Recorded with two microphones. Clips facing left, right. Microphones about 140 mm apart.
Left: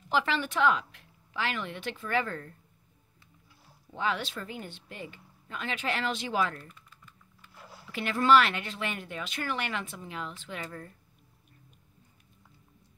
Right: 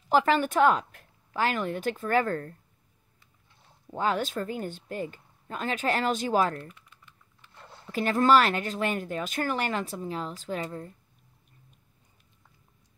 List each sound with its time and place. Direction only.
0.1 s speech: 45° right (ahead or behind)
3.9 s speech: 45° right (ahead or behind)
7.4 s a sound: 5° left (ahead or behind)
7.8 s speech: 40° right (ahead or behind)